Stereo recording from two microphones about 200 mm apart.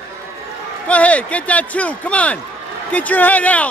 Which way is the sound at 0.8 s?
5° left (ahead or behind).